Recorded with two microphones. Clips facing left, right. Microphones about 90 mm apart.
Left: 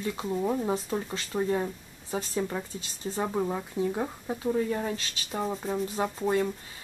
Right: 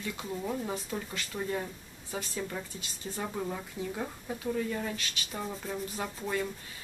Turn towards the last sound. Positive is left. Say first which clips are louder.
# left 7 dB
turn(degrees=30)  # may be behind; listen again after turning